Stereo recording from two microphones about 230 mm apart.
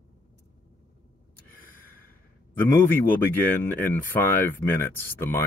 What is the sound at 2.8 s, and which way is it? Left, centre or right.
Speech, centre.